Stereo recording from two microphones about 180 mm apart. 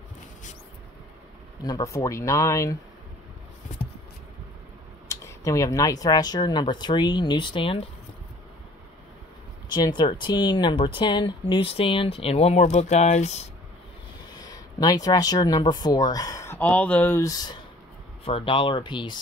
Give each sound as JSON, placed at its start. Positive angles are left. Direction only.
{"t": 1.6, "sound": "speech", "side_deg": 20}
{"t": 5.0, "sound": "speech", "side_deg": 15}
{"t": 9.8, "sound": "speech", "side_deg": 25}
{"t": 14.4, "sound": "speech", "side_deg": 20}
{"t": 18.2, "sound": "speech", "side_deg": 30}